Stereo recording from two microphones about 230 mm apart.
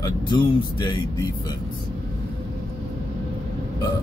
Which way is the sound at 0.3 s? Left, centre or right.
Centre.